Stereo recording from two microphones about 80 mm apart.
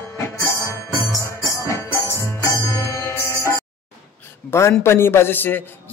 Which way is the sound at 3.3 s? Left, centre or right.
Right.